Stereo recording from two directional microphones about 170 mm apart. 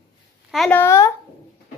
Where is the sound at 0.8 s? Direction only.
15° left (ahead or behind).